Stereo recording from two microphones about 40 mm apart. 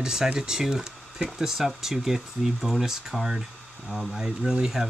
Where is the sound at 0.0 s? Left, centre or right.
Centre.